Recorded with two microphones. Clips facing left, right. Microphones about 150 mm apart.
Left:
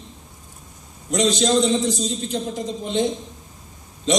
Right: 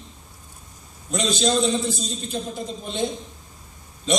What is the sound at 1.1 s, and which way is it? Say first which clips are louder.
A man's voice: left 4 dB; 15° left (ahead or behind).